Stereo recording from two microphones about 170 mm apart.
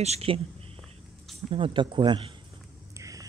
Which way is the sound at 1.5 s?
30° right (ahead or behind).